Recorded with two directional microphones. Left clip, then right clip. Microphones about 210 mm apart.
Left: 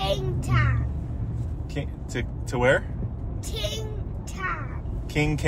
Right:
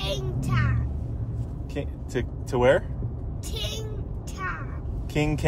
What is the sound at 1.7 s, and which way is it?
Speech, 30° right (ahead or behind).